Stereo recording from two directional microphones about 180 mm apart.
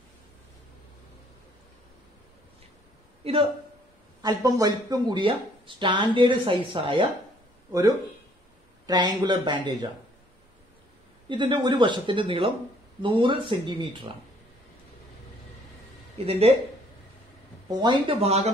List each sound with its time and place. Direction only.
3.2 s a man's voice: 35° right (ahead or behind)
4.2 s speech: 20° right (ahead or behind)
8.8 s speech: 25° right (ahead or behind)
11.2 s speech: 25° right (ahead or behind)
16.2 s speech: 35° right (ahead or behind)
17.6 s speech: 25° right (ahead or behind)